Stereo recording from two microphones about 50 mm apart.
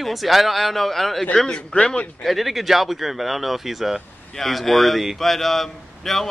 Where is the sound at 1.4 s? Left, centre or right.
Centre.